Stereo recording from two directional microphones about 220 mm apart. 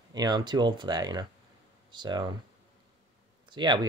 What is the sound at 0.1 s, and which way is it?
Speech, 20° right (ahead or behind).